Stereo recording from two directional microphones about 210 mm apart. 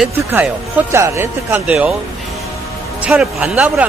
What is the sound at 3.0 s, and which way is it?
Speech, 5° right (ahead or behind).